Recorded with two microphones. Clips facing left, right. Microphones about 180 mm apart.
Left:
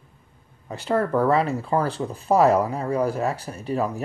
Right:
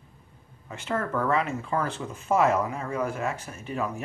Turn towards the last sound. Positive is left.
turn(degrees=35)  # may be behind; listen again after turning